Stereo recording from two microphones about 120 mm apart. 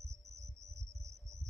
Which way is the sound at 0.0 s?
65° right (ahead or behind).